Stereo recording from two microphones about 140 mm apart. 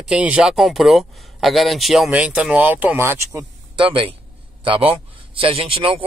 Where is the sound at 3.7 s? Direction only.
40° right (ahead or behind).